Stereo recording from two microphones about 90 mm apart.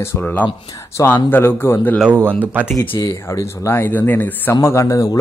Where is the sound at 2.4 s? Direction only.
20° right (ahead or behind).